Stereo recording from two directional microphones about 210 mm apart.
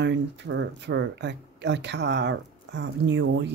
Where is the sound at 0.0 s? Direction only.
55° right (ahead or behind).